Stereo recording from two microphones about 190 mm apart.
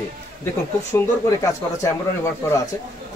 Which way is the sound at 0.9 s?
15° left (ahead or behind).